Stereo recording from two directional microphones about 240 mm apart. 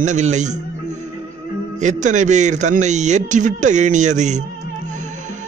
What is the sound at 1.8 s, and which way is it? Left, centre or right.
A man's voice, right.